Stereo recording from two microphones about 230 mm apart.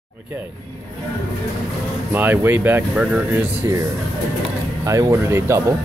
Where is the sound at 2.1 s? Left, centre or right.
Centre.